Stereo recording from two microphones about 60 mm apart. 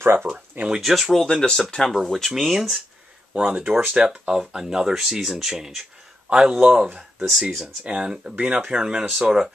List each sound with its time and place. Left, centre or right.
0.0 s speech: right
0.7 s speech: centre
1.2 s speech: centre
3.3 s speech: centre
7.2 s speech: centre
7.6 s speech: centre